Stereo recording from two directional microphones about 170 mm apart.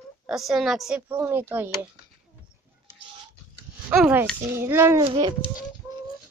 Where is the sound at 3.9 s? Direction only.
10° right (ahead or behind); by 5.5 s 25° right (ahead or behind).